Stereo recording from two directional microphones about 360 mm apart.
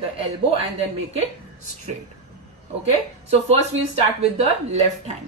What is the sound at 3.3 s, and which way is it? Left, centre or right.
Speech, centre.